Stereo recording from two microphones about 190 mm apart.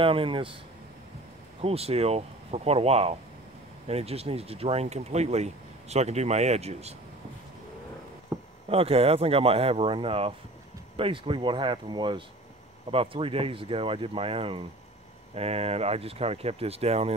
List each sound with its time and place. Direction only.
0.0 s speech: 30° right (ahead or behind)
1.6 s speech: 30° right (ahead or behind)
8.3 s a sound: 15° right (ahead or behind)
8.6 s speech: 30° right (ahead or behind)